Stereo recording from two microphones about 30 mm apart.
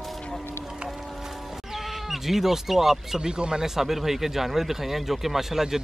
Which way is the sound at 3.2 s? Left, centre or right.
Right.